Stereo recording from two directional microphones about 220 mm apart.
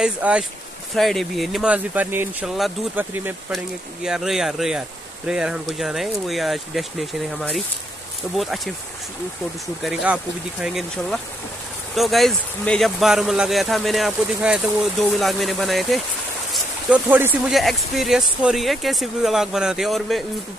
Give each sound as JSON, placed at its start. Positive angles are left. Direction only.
{"t": 0.0, "sound": "speech", "side_deg": -5}
{"t": 9.8, "sound": "speech", "side_deg": -5}